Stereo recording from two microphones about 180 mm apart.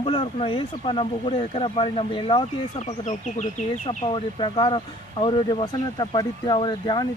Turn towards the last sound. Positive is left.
turn(degrees=25)  # may be behind; listen again after turning